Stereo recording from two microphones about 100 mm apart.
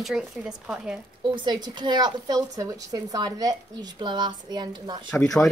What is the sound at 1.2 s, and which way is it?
A woman's voice, 50° right (ahead or behind).